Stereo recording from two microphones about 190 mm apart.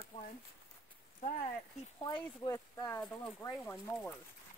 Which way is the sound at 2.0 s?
20° left (ahead or behind).